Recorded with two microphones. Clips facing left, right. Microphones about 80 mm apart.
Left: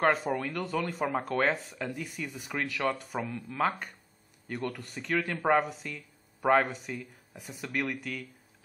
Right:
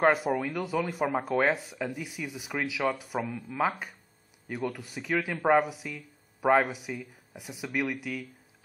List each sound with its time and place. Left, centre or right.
0.0 s speech: centre